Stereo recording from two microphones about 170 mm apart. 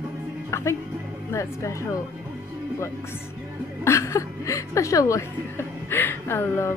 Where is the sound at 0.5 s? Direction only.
15° left (ahead or behind).